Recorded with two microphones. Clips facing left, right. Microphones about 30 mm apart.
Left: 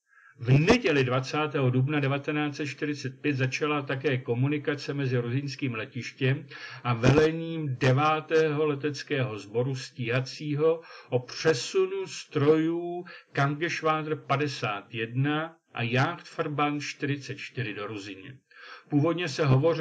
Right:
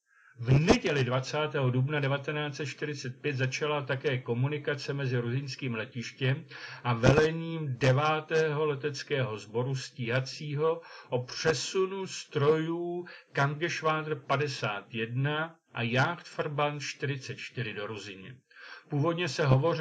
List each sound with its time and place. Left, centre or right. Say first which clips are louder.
0.5 s a man's voice: left 3 dB; left